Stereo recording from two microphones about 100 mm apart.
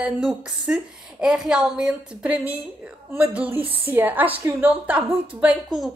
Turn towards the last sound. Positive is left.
turn(degrees=-15)  # may be behind; listen again after turning